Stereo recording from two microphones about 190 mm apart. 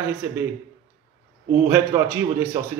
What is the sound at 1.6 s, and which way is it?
Speech, 15° right (ahead or behind).